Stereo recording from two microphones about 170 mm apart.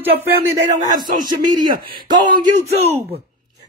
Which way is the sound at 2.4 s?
40° right (ahead or behind).